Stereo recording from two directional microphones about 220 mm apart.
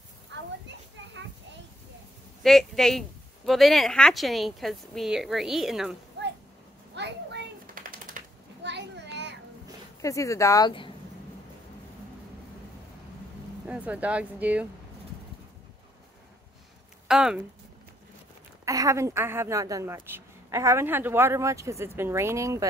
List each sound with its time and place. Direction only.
2.4 s a woman's voice: centre (ahead or behind)
7.0 s a sound: 50° right (ahead or behind)
8.6 s a sound: 50° right (ahead or behind)
10.0 s speech: 15° left (ahead or behind)
13.7 s a woman's voice: 5° right (ahead or behind)
17.1 s a woman's voice: 5° right (ahead or behind)
18.7 s a woman's voice: 15° right (ahead or behind)